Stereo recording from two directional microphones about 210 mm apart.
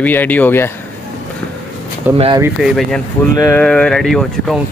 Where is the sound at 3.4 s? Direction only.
5° left (ahead or behind).